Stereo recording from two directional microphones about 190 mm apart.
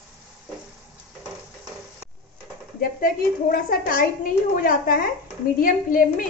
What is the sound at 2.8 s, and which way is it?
A woman's voice, 50° left (ahead or behind).